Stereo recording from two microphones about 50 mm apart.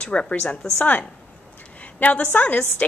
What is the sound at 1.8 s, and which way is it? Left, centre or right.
A woman's voice, left.